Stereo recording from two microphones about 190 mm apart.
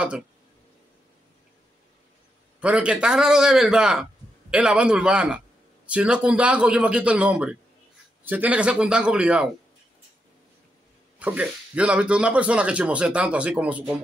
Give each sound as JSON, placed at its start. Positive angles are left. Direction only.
{"t": 2.6, "sound": "a man's voice", "side_deg": -5}
{"t": 11.1, "sound": "a man's voice", "side_deg": -5}